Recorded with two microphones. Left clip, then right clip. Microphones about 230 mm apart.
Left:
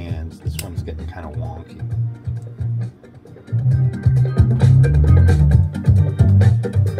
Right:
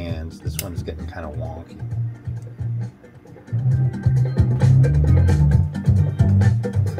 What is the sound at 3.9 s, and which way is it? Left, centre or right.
Music, left.